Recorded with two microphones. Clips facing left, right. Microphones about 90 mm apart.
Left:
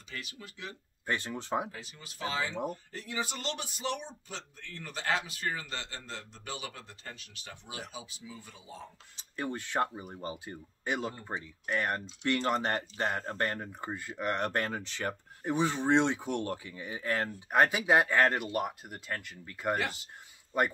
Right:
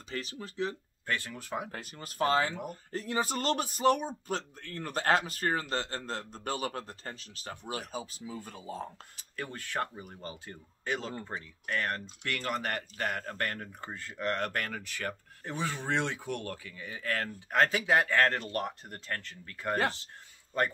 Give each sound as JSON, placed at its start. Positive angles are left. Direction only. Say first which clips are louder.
{"t": 0.1, "sound": "speech", "louder": "right 6 dB", "side_deg": -35}
{"t": 1.0, "sound": "speech", "louder": "left 1 dB", "side_deg": 20}
{"t": 1.7, "sound": "speech", "louder": "right 4 dB", "side_deg": -50}
{"t": 2.5, "sound": "speech", "louder": "left 4 dB", "side_deg": 25}
{"t": 2.9, "sound": "speech", "louder": "right 5 dB", "side_deg": -40}
{"t": 9.1, "sound": "speech", "louder": "left 4 dB", "side_deg": 20}